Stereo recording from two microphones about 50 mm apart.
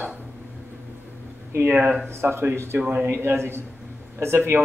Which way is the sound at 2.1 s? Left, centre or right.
Right.